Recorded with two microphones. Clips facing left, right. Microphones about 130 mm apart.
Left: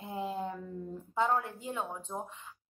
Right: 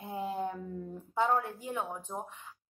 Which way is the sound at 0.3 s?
15° right (ahead or behind).